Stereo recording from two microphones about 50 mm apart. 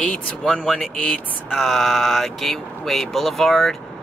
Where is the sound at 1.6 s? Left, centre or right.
Centre.